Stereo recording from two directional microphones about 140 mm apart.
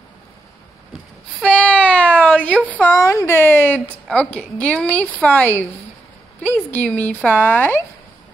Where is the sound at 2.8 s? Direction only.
20° left (ahead or behind).